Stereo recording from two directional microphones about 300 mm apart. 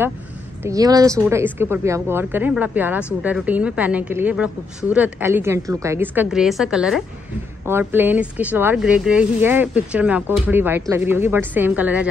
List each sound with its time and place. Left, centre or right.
0.7 s speech: centre